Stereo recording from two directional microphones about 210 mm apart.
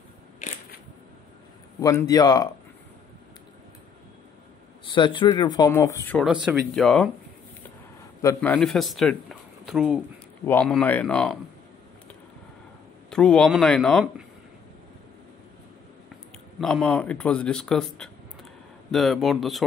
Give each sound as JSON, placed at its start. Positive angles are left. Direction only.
{"t": 1.8, "sound": "speech", "side_deg": 15}
{"t": 4.8, "sound": "speech", "side_deg": 20}
{"t": 6.2, "sound": "a man's voice", "side_deg": -5}
{"t": 8.4, "sound": "a man's voice", "side_deg": 5}
{"t": 10.4, "sound": "speech", "side_deg": 5}
{"t": 13.1, "sound": "a man's voice", "side_deg": 5}
{"t": 16.5, "sound": "a man's voice", "side_deg": 0}